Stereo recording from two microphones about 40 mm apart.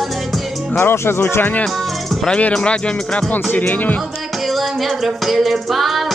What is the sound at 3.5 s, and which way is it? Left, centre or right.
Speech, left.